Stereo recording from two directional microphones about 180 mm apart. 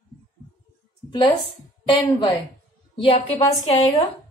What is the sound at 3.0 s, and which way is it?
Speech, 35° left (ahead or behind).